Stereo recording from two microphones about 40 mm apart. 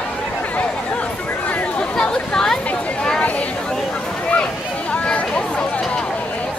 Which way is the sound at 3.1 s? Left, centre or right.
Left.